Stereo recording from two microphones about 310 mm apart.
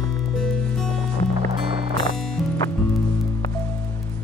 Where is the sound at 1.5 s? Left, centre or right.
Centre.